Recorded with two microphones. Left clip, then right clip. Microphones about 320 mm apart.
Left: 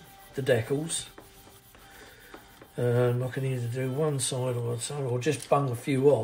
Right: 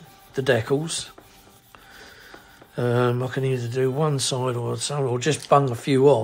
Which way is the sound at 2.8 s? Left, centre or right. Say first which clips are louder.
Right 4 dB; centre.